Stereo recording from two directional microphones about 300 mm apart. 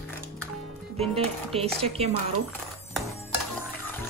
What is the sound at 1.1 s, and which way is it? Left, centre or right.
Speech, centre.